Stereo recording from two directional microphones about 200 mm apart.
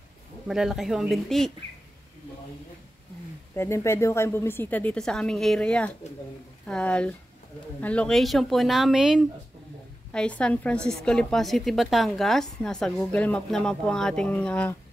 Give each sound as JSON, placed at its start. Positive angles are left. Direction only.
{"t": 0.5, "sound": "a woman's voice", "side_deg": 0}
{"t": 3.5, "sound": "a woman's voice", "side_deg": 15}